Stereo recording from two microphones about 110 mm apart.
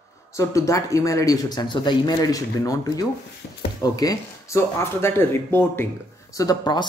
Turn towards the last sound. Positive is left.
turn(degrees=40)  # may be behind; listen again after turning